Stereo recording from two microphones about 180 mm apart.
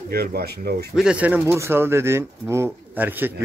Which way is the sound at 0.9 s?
5° right (ahead or behind).